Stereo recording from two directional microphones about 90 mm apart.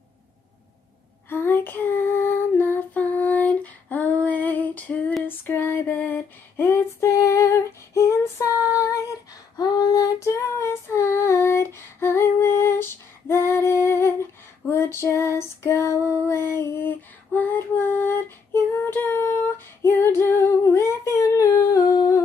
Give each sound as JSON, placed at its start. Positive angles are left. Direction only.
{"t": 1.3, "sound": "female singing", "side_deg": 25}